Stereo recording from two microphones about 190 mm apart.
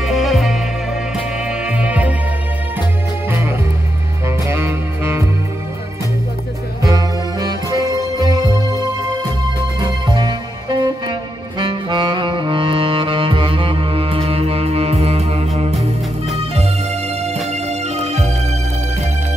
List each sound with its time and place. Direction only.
0.0 s music: centre (ahead or behind)
1.7 s music: 5° right (ahead or behind)
4.5 s music: 15° right (ahead or behind)
6.8 s music: 20° right (ahead or behind)
9.8 s music: 20° right (ahead or behind)
17.5 s music: 35° right (ahead or behind)